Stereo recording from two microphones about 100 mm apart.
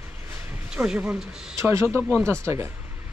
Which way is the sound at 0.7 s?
10° right (ahead or behind).